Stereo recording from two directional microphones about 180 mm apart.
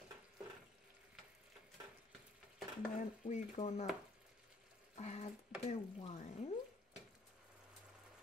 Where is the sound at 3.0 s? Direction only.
40° left (ahead or behind).